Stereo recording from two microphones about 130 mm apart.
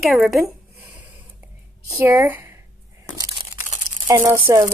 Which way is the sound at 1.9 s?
20° right (ahead or behind).